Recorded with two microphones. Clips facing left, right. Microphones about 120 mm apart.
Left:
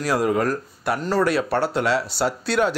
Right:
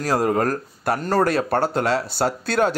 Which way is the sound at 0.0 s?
40° right (ahead or behind).